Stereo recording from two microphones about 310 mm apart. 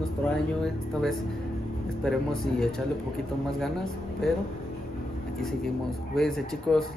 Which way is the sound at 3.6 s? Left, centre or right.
Centre.